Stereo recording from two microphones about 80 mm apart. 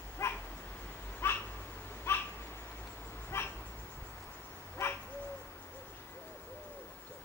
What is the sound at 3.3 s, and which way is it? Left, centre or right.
Dog, left.